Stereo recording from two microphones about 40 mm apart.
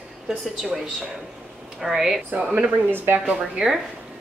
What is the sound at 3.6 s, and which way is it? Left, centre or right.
Speech, right.